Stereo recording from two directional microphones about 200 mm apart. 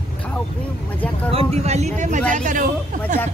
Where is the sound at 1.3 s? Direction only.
30° right (ahead or behind).